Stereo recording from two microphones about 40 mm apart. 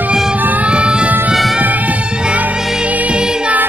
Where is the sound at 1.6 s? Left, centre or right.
Right.